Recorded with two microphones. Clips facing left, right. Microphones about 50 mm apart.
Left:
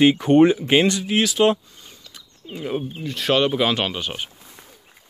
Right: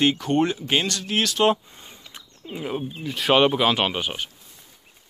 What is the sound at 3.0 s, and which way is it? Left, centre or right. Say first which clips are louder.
Speech: right 2 dB; centre.